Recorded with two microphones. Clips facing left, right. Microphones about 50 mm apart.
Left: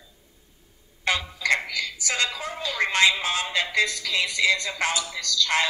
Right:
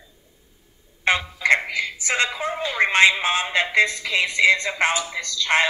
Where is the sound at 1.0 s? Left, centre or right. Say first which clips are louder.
Right 5 dB; right.